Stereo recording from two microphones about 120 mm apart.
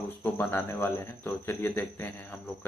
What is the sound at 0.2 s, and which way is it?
Speech, 15° left (ahead or behind).